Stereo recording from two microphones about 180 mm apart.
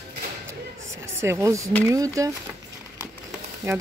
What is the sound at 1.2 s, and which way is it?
Speech, 15° right (ahead or behind).